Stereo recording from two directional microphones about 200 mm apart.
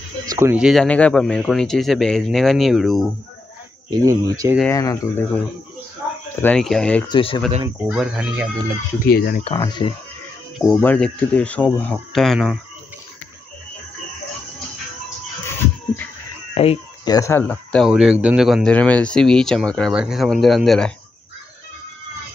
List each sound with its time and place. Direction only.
0.3 s speech: 10° right (ahead or behind)
3.9 s speech: 20° right (ahead or behind)
4.6 s speech: 15° left (ahead or behind)
6.4 s speech: 5° left (ahead or behind)
7.1 s speech: 25° left (ahead or behind)
7.9 s speech: 5° right (ahead or behind)
9.0 s speech: 50° left (ahead or behind)
9.4 s speech: 25° left (ahead or behind)
10.6 s speech: 5° left (ahead or behind)
16.5 s speech: 25° left (ahead or behind); by 20.9 s centre (ahead or behind)